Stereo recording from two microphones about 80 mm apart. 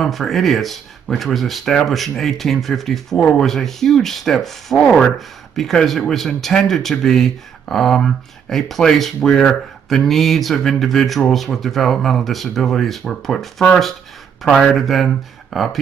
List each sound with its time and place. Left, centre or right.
0.0 s speech: centre
3.2 s speech: centre
3.4 s speech: centre